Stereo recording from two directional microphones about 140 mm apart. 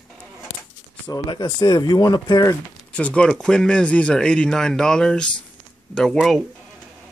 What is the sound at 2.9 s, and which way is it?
Speech, 10° left (ahead or behind).